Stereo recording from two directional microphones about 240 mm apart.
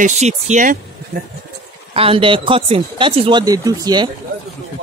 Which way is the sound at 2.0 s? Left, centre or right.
Right.